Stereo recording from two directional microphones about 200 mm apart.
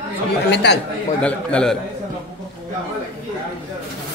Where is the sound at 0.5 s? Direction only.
60° left (ahead or behind).